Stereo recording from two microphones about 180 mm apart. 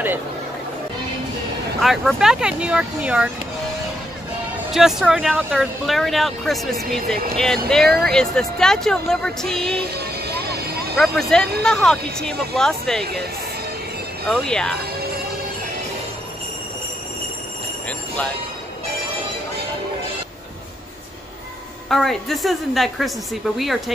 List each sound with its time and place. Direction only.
1.8 s speech: centre (ahead or behind)
4.7 s speech: centre (ahead or behind)
9.9 s vehicle: 60° right (ahead or behind)
11.0 s speech: centre (ahead or behind)
14.3 s speech: 5° left (ahead or behind)
17.8 s a sound: 5° left (ahead or behind)
21.8 s speech: centre (ahead or behind)